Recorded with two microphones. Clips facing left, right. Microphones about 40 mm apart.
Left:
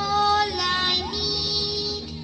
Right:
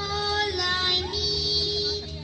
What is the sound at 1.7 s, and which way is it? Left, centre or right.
Music, right.